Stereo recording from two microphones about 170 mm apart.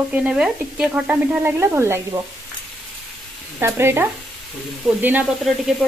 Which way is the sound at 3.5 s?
15° right (ahead or behind).